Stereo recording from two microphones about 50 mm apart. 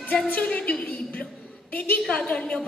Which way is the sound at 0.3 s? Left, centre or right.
Left.